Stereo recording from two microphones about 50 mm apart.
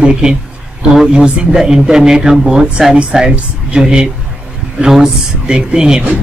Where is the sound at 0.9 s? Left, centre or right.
Centre.